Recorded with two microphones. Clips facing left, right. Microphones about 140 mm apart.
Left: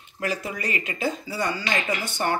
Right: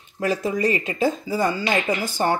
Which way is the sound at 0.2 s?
30° right (ahead or behind).